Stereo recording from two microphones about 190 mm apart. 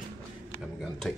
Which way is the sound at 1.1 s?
Centre (ahead or behind).